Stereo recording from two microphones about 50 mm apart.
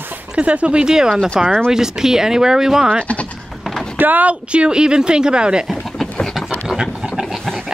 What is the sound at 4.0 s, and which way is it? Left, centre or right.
Speech, right.